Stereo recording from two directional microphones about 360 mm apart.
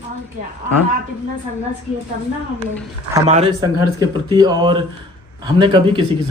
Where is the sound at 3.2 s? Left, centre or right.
Centre.